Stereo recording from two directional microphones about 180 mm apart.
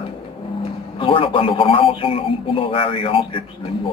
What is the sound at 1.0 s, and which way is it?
A man's voice, 30° left (ahead or behind).